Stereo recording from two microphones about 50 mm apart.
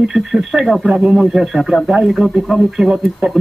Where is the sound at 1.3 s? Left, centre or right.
Centre.